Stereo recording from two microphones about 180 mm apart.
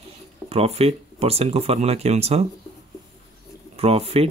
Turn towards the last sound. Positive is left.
turn(degrees=-35)  # may be behind; listen again after turning